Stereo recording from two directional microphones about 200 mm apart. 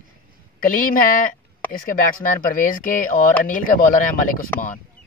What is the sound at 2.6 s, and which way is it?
A man's voice, 40° left (ahead or behind).